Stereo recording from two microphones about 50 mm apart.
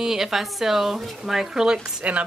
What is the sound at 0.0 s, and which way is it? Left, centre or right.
A woman's voice, centre.